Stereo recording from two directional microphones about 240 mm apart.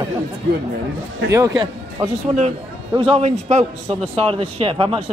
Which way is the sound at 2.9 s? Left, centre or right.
Right.